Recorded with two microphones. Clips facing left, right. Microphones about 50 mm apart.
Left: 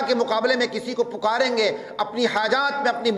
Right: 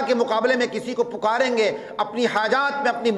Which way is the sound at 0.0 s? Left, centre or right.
Right.